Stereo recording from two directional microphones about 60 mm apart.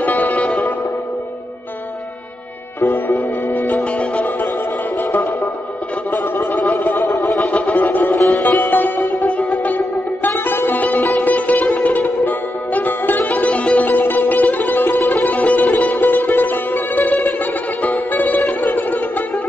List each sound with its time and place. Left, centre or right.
0.0 s music: left
2.8 s music: left
6.2 s music: left